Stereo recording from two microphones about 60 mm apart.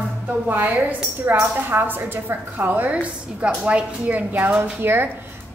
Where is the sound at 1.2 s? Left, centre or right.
Right.